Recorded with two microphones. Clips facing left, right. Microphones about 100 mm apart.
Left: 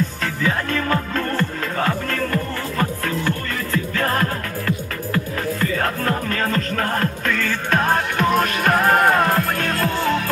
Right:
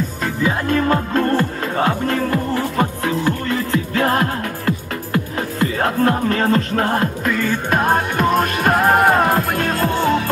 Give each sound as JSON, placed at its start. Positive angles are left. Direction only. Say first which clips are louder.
{"t": 0.2, "sound": "music", "louder": "right 3 dB", "side_deg": -15}
{"t": 6.9, "sound": "music", "louder": "right 3 dB", "side_deg": -15}